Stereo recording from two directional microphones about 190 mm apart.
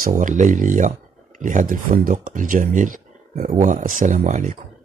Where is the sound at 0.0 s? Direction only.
40° right (ahead or behind).